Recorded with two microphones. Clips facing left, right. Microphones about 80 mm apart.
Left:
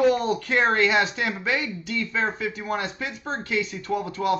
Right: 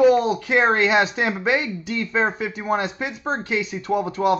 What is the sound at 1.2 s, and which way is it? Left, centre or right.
Speech, right.